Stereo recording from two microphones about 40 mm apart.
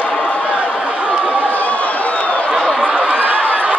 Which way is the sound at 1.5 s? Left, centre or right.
Left.